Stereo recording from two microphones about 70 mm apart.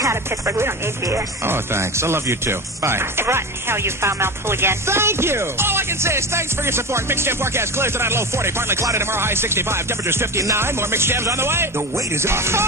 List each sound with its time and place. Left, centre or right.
0.0 s speech: right